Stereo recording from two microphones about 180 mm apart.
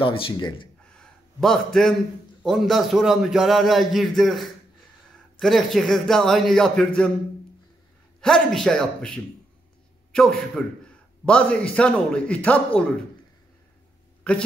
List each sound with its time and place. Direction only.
0.0 s speech: 30° left (ahead or behind)
0.9 s a sound: 5° left (ahead or behind)
2.4 s a man's voice: centre (ahead or behind)
8.2 s a man's voice: 5° left (ahead or behind)